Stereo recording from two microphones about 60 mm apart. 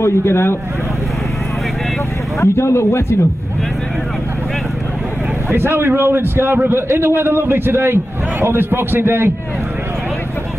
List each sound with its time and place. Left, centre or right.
0.0 s speech: left
2.4 s speech: left
5.5 s a man's voice: right